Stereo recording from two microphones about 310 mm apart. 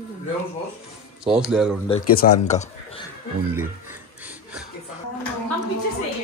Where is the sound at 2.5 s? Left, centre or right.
Left.